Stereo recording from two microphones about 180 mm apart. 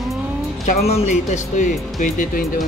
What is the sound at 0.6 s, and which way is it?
Speech, 35° left (ahead or behind).